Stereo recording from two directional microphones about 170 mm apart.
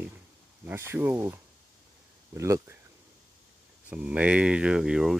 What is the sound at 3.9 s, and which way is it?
Speech, 5° right (ahead or behind).